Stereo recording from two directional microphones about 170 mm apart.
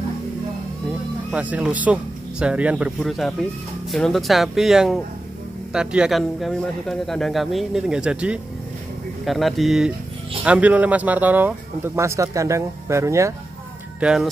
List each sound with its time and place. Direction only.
1.3 s speech: 10° right (ahead or behind)
13.9 s speech: 5° right (ahead or behind)